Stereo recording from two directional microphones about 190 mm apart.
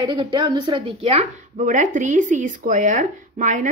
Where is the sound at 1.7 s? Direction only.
40° right (ahead or behind).